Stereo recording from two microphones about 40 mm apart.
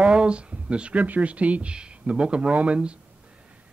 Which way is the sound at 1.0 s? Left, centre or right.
Right.